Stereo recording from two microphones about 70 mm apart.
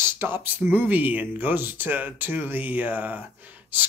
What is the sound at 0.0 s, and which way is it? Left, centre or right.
Speech, right.